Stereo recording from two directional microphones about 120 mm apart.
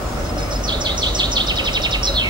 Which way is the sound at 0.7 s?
40° right (ahead or behind).